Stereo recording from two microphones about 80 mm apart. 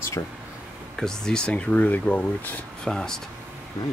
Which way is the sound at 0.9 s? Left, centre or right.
Centre.